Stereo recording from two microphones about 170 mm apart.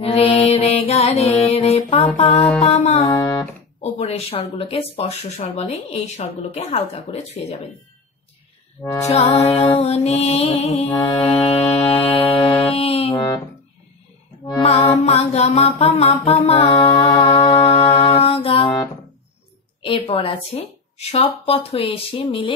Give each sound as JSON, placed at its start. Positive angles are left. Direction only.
{"t": 0.0, "sound": "music", "side_deg": 35}
{"t": 3.0, "sound": "music", "side_deg": 20}
{"t": 3.8, "sound": "speech", "side_deg": 35}
{"t": 9.4, "sound": "speech", "side_deg": 35}
{"t": 14.5, "sound": "speech", "side_deg": 35}
{"t": 15.0, "sound": "music", "side_deg": 40}
{"t": 19.8, "sound": "speech", "side_deg": 30}